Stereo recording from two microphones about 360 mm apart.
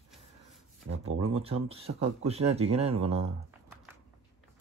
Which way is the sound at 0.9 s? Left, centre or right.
Centre.